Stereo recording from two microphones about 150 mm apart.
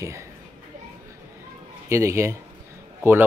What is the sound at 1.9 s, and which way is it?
Speech, 20° right (ahead or behind).